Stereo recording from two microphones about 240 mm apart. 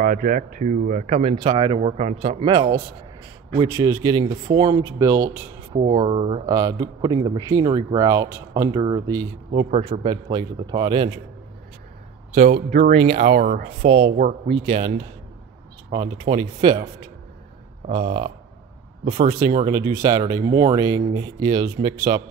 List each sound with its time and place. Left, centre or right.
0.0 s a man's voice: right
12.4 s speech: right
13.8 s speech: right
17.8 s speech: right